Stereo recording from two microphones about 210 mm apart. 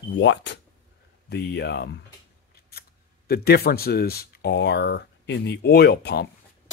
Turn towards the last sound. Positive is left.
turn(degrees=50)  # may be behind; listen again after turning